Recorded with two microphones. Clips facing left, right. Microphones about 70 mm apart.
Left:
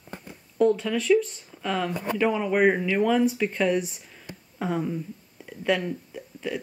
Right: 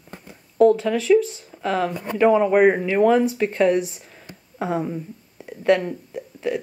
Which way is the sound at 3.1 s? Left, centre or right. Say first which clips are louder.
Right 4 dB; centre.